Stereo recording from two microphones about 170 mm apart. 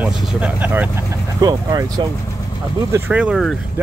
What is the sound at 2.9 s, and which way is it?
Speech, 5° right (ahead or behind).